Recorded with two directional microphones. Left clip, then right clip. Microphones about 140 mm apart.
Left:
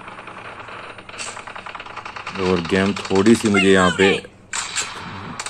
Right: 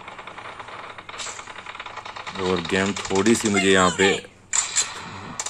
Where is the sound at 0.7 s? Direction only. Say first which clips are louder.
Left 2 dB; 30° right (ahead or behind).